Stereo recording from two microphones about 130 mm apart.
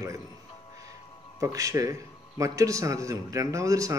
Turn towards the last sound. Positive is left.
turn(degrees=-25)  # may be behind; listen again after turning